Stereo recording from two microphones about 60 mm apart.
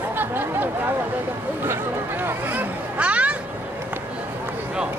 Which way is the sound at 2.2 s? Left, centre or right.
Right.